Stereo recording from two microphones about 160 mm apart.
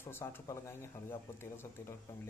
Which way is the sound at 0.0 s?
15° left (ahead or behind).